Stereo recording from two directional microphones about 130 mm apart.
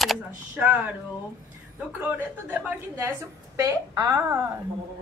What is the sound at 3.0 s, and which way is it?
A woman's voice, 25° right (ahead or behind).